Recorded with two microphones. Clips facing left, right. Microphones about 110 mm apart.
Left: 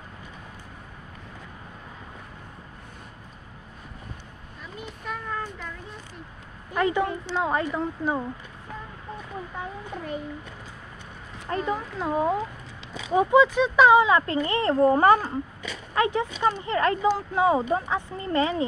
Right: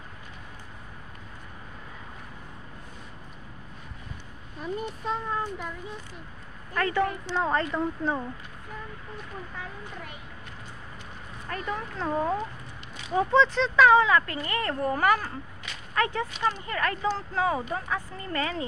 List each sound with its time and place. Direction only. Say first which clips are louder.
4.6 s a child's voice: right 8 dB; 40° right (ahead or behind); by 5.7 s 25° right (ahead or behind)
6.7 s speech: left 2 dB; 15° left (ahead or behind)
11.4 s speech: left 5 dB; 20° left (ahead or behind)